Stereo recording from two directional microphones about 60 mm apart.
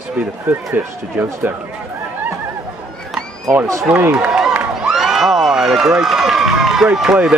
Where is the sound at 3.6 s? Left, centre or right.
Right.